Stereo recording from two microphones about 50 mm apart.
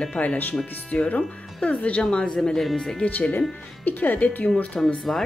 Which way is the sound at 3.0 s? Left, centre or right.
Left.